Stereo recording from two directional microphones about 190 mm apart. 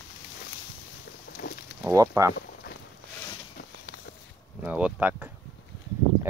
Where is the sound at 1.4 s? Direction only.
55° left (ahead or behind).